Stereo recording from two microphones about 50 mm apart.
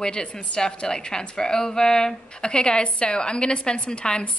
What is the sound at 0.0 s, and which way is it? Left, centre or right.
A woman's voice, centre.